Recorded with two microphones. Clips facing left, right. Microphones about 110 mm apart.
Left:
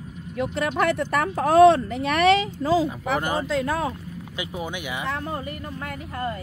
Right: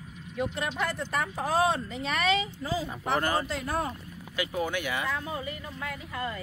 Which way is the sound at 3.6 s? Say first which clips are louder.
Left 6 dB; 90° left.